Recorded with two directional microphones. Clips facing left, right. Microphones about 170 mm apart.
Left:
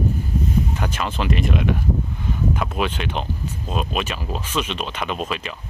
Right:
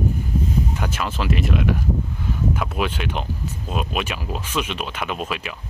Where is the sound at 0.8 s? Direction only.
10° right (ahead or behind).